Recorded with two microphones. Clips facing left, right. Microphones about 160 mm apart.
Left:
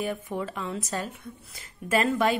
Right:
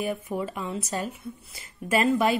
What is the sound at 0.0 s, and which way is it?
A woman's voice, 5° right (ahead or behind).